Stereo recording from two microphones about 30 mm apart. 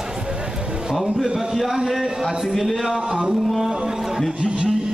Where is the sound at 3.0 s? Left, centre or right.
Right.